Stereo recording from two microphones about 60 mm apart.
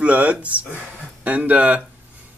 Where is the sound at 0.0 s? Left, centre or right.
Right.